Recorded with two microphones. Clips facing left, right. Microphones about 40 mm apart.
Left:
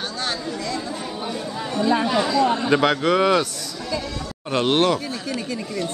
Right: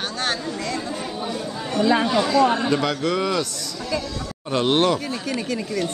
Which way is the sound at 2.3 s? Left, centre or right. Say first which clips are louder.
Right 3 dB; right.